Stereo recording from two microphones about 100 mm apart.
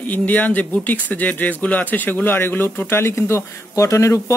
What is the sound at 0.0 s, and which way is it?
Speech, 15° left (ahead or behind).